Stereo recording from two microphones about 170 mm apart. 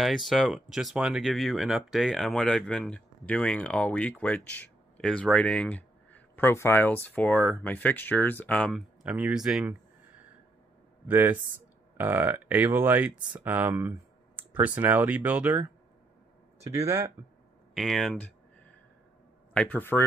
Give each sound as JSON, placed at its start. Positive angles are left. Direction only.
{"t": 0.0, "sound": "speech", "side_deg": 0}
{"t": 9.0, "sound": "speech", "side_deg": -5}
{"t": 11.1, "sound": "speech", "side_deg": -10}
{"t": 16.6, "sound": "speech", "side_deg": -20}
{"t": 17.7, "sound": "speech", "side_deg": 0}
{"t": 19.5, "sound": "speech", "side_deg": 5}